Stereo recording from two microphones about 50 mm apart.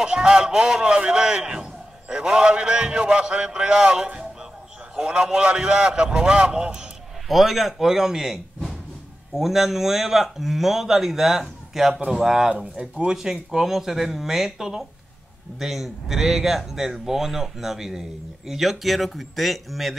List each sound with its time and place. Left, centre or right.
0.0 s a man's voice: centre
7.2 s speech: centre